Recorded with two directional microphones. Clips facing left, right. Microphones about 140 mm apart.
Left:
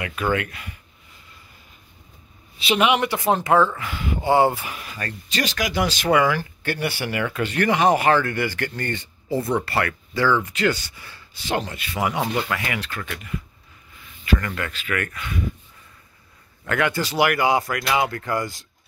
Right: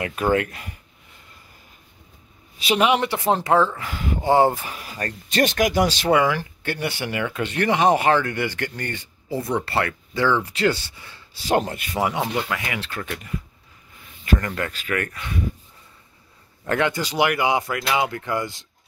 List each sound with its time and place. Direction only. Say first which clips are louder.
0.0 s speech: right 3 dB; 35° right (ahead or behind)
2.6 s speech: even; 40° right (ahead or behind)
5.3 s speech: right 6 dB; 55° right (ahead or behind)
5.9 s speech: even; 30° right (ahead or behind); by 9.7 s 15° right (ahead or behind)
9.7 s speech: even; 25° right (ahead or behind)
11.3 s speech: right 5 dB; 40° right (ahead or behind)
12.4 s speech: left 1 dB; 20° right (ahead or behind)
14.2 s speech: right 1 dB; 45° right (ahead or behind)
16.6 s speech: right 1 dB; 30° right (ahead or behind)
16.9 s speech: left 1 dB; 20° right (ahead or behind)